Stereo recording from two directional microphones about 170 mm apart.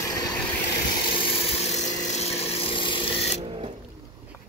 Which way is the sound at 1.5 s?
40° left (ahead or behind).